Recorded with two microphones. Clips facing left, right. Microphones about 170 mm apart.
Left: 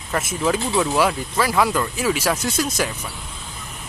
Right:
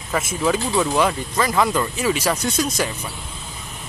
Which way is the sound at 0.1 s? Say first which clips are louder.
Right 1 dB; centre (ahead or behind).